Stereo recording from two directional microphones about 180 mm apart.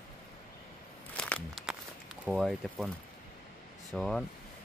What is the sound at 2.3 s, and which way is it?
Speech, centre (ahead or behind).